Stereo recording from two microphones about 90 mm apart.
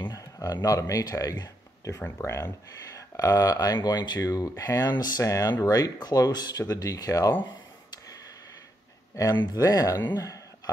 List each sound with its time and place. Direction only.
0.4 s speech: 45° left (ahead or behind)
3.5 s speech: 50° left (ahead or behind)
5.2 s speech: 35° left (ahead or behind)
9.1 s speech: 40° left (ahead or behind)